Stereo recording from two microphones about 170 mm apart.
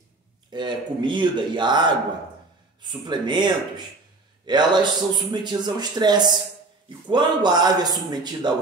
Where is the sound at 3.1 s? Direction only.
25° right (ahead or behind).